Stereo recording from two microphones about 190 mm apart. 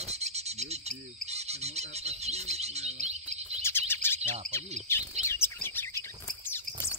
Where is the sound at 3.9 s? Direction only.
10° left (ahead or behind).